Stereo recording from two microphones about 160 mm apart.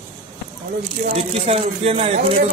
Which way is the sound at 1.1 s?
40° right (ahead or behind).